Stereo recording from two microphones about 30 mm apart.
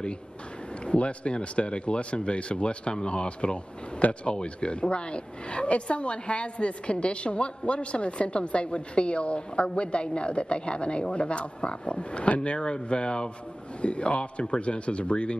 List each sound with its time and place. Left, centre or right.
0.8 s a woman's voice: left